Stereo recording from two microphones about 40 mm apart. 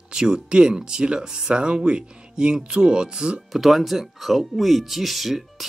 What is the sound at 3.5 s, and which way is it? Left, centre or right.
Speech, centre.